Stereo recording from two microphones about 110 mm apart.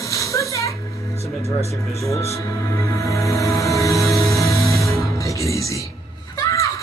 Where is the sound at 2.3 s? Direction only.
30° left (ahead or behind).